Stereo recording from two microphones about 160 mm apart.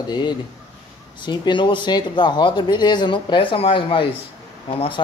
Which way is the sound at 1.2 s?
30° left (ahead or behind).